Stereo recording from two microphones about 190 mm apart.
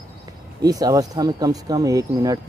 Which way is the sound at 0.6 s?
20° right (ahead or behind).